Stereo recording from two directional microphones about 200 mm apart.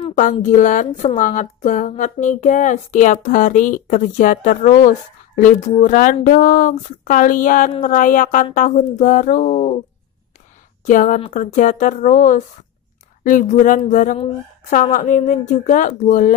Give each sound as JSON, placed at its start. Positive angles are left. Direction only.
{"t": 0.2, "sound": "a woman's voice", "side_deg": 40}
{"t": 10.9, "sound": "a woman's voice", "side_deg": 40}